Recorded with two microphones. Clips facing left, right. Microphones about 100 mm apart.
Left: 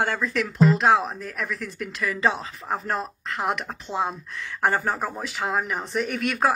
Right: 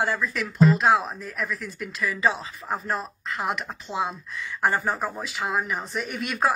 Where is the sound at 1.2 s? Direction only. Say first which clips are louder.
Even; 65° left (ahead or behind).